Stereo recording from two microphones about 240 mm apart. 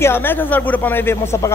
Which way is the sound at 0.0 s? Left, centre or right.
Centre.